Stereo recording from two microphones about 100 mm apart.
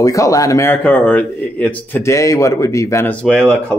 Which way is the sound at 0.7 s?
15° left (ahead or behind).